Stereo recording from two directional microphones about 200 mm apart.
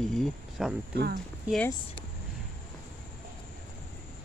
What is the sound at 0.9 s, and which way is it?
Speech, 50° right (ahead or behind).